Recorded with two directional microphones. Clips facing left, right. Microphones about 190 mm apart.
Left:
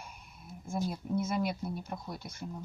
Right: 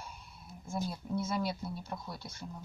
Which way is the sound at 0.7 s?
20° left (ahead or behind).